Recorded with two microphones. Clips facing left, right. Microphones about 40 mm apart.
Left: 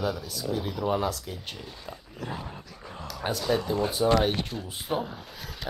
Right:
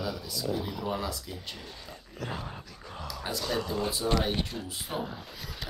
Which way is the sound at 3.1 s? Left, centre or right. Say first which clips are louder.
Left 4 dB; left.